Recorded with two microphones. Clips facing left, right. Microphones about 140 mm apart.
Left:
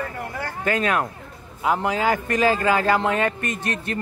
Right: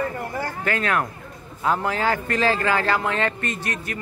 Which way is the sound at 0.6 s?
20° left (ahead or behind).